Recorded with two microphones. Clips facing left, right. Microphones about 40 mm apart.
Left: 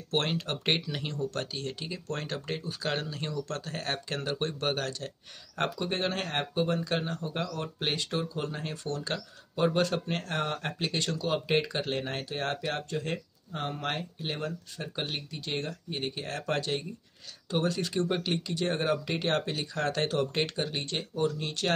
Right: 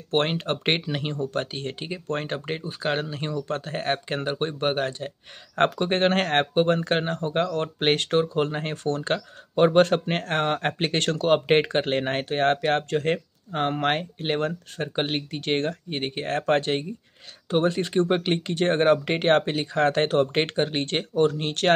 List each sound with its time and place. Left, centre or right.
0.1 s speech: right
5.6 s speech: right